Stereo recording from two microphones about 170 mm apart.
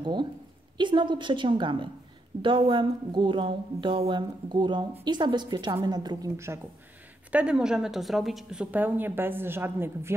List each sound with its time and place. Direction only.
0.0 s a woman's voice: 25° right (ahead or behind)